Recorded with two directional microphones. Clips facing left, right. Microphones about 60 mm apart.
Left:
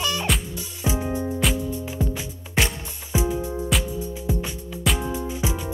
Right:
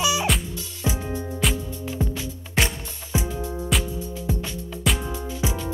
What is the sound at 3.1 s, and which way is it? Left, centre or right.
Music, left.